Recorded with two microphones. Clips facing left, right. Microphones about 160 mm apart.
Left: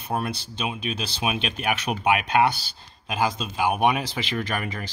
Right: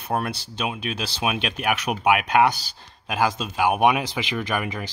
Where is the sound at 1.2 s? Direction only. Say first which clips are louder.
Right 2 dB; 10° right (ahead or behind).